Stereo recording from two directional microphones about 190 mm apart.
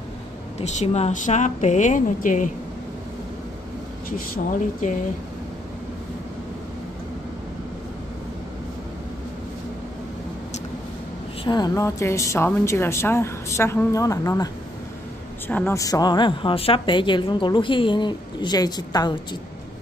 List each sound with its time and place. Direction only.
0.6 s a woman's voice: 35° left (ahead or behind)
4.8 s a woman's voice: 40° left (ahead or behind)
11.4 s a woman's voice: 20° left (ahead or behind)